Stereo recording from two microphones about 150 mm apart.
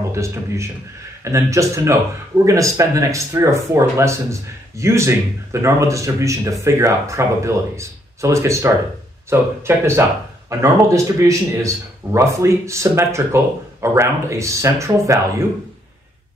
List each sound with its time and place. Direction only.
0.1 s speech: 20° right (ahead or behind)